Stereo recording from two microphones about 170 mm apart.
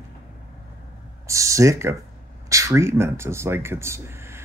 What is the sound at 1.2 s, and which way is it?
Speech, 20° right (ahead or behind).